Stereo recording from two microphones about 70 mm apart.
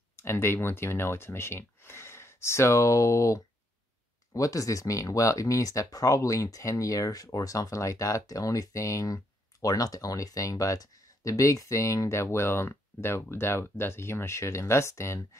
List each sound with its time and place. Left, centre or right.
0.1 s speech: left